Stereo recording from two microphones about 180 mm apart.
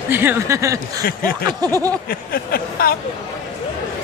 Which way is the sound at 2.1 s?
60° left (ahead or behind).